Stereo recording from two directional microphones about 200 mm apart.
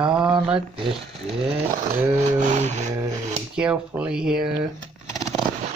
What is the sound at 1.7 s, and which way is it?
Music, 40° right (ahead or behind).